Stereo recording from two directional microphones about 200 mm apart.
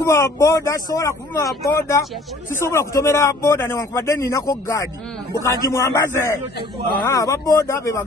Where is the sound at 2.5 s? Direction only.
15° left (ahead or behind).